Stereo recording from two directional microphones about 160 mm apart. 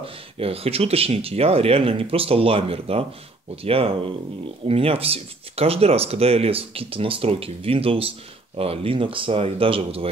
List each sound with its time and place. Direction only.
0.0 s speech: 35° right (ahead or behind)